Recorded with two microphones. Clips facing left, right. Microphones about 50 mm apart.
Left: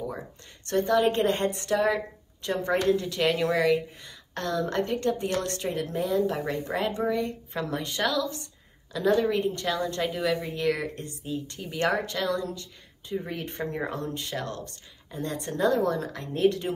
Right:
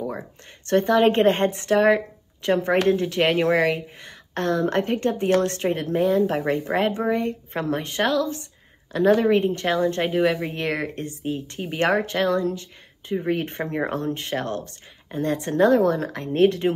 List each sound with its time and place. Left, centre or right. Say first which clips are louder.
0.0 s a woman's voice: right 4 dB; right